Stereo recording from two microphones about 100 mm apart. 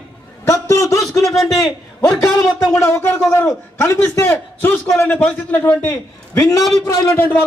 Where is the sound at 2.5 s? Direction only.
30° left (ahead or behind).